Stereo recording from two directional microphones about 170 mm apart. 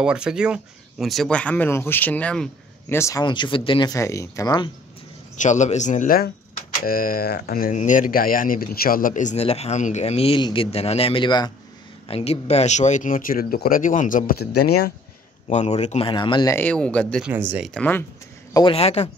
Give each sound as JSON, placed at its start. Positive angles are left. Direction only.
{"t": 0.0, "sound": "speech", "side_deg": -5}
{"t": 3.0, "sound": "speech", "side_deg": 20}
{"t": 5.3, "sound": "speech", "side_deg": 45}
{"t": 12.1, "sound": "speech", "side_deg": 35}
{"t": 15.4, "sound": "speech", "side_deg": 40}
{"t": 16.5, "sound": "speech", "side_deg": 10}
{"t": 17.2, "sound": "speech", "side_deg": -10}
{"t": 17.6, "sound": "speech", "side_deg": 10}
{"t": 18.5, "sound": "speech", "side_deg": 30}